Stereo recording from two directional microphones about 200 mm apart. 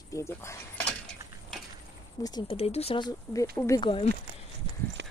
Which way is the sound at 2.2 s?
20° left (ahead or behind).